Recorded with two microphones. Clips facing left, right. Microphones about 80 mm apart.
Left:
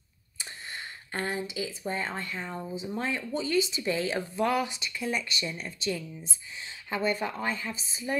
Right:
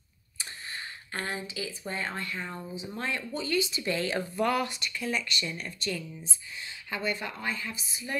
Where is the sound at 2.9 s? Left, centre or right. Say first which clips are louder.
Left 2 dB; centre.